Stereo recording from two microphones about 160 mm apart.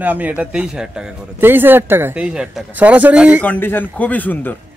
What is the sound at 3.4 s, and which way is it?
A man's voice, 10° left (ahead or behind).